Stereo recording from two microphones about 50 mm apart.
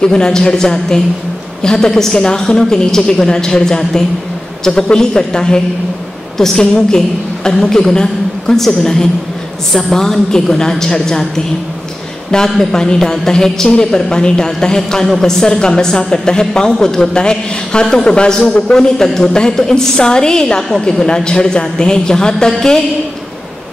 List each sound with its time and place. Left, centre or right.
0.0 s a woman's voice: centre